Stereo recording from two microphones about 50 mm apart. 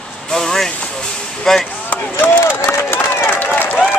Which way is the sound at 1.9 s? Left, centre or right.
Left.